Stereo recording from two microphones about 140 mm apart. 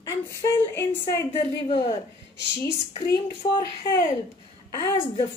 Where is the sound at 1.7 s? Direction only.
40° left (ahead or behind).